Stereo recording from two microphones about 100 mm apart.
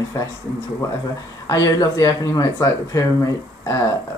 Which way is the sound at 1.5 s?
40° left (ahead or behind).